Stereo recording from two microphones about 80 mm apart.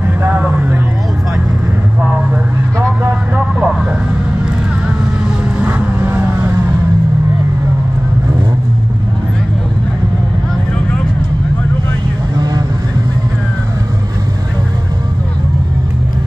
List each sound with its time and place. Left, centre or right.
0.2 s vehicle: right
2.0 s a sound: centre
3.3 s vehicle: centre
5.6 s vehicle: right
12.4 s vehicle: right